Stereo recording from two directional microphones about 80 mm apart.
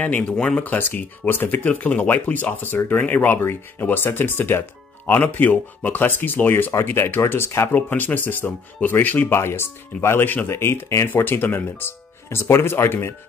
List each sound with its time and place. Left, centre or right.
0.0 s speech: centre
9.3 s speech: left